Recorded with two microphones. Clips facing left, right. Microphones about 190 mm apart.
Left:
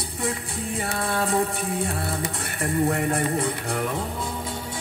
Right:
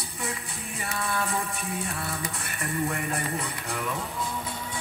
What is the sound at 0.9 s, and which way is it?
Speech, 35° left (ahead or behind).